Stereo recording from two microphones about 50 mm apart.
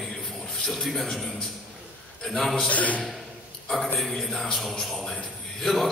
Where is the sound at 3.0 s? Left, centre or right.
Centre.